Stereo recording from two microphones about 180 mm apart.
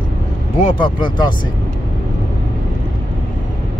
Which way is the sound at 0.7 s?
25° left (ahead or behind).